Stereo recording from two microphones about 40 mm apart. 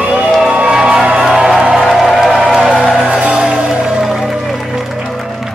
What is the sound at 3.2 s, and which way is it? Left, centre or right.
Music, right.